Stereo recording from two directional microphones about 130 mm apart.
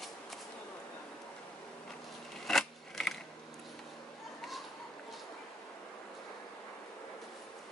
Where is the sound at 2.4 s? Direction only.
5° left (ahead or behind).